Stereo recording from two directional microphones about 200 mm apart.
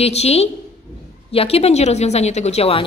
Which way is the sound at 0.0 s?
30° left (ahead or behind).